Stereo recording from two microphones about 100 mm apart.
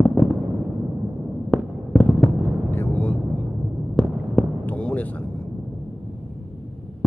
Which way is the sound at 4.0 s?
5° left (ahead or behind).